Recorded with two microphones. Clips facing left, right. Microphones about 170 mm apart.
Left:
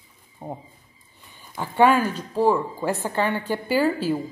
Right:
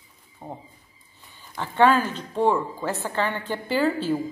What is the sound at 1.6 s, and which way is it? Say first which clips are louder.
A woman's voice: left 1 dB; 10° left (ahead or behind).